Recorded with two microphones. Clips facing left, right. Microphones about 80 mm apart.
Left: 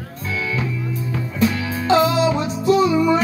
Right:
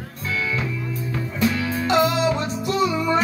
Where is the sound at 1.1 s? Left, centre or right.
Centre.